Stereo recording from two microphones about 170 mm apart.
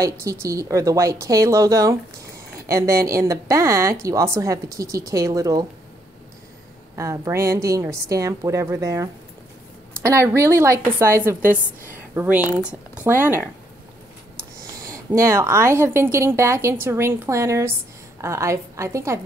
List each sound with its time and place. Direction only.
0.0 s a woman's voice: 20° right (ahead or behind)
7.0 s a woman's voice: 20° right (ahead or behind)
14.8 s a woman's voice: 20° right (ahead or behind)